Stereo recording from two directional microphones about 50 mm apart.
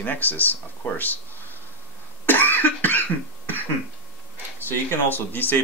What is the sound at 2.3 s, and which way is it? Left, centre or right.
Cough, left.